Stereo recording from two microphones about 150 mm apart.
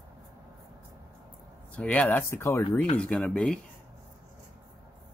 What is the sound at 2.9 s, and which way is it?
Speech, 5° left (ahead or behind).